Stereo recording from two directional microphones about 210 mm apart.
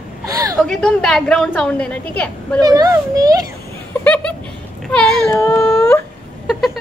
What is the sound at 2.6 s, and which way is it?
Speech, 15° right (ahead or behind).